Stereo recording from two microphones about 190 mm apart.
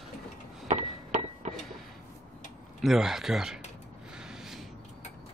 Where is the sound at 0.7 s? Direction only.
40° right (ahead or behind).